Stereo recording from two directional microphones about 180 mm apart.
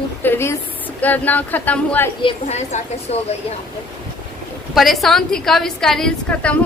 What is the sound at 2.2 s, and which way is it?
A woman's voice, 30° left (ahead or behind).